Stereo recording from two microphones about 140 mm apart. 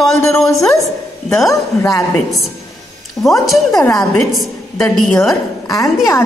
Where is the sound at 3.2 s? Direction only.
25° left (ahead or behind).